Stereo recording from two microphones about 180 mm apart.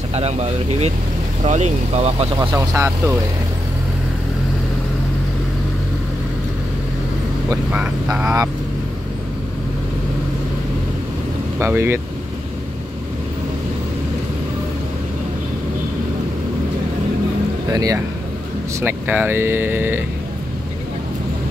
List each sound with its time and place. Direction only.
0.1 s speech: 35° right (ahead or behind)
2.3 s speech: 20° right (ahead or behind)
7.4 s speech: 10° right (ahead or behind)
11.6 s speech: 15° right (ahead or behind)
17.6 s speech: 20° right (ahead or behind)